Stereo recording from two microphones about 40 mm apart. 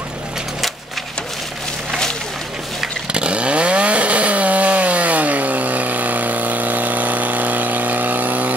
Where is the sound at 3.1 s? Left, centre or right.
Right.